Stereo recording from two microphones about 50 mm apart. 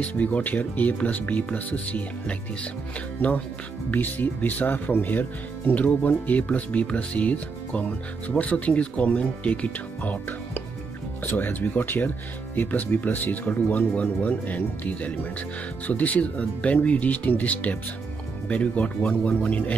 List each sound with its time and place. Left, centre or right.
0.0 s speech: left
3.2 s speech: left
11.2 s speech: left